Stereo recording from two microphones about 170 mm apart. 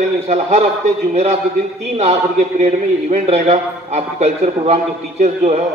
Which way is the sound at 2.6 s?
40° right (ahead or behind).